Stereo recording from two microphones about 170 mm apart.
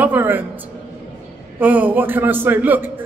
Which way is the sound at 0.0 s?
10° right (ahead or behind).